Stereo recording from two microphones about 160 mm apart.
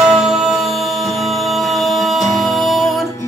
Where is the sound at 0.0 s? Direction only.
Centre (ahead or behind).